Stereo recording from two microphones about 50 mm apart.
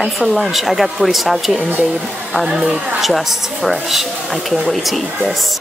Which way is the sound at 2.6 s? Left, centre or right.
Right.